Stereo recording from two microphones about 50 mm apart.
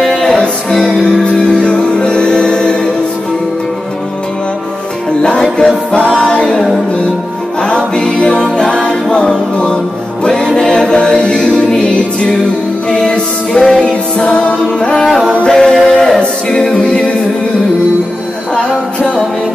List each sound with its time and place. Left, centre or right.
0.2 s music: centre
1.2 s music: centre
5.2 s music: centre
6.4 s music: centre
7.6 s music: centre
10.2 s a capella: centre
12.9 s music: centre
13.6 s music: centre
13.8 s music: left
15.4 s a capella: centre